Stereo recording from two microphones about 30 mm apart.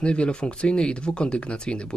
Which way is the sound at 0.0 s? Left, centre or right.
Left.